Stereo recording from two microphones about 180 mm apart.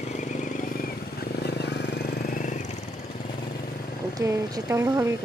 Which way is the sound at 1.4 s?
65° left (ahead or behind).